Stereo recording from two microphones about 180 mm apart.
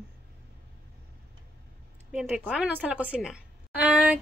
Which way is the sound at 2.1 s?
5° right (ahead or behind).